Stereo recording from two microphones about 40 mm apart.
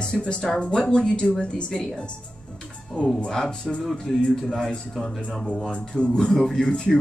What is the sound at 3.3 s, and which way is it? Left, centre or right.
A woman's voice, centre.